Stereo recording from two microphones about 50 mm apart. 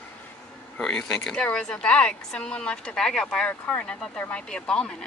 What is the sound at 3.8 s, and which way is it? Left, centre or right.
A woman's voice, centre.